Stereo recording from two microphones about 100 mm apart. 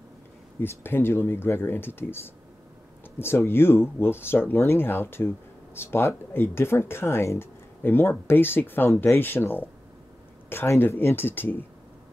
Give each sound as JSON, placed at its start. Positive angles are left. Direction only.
{"t": 0.6, "sound": "speech", "side_deg": 20}